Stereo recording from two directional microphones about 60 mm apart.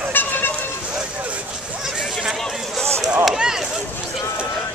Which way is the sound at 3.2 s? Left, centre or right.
Centre.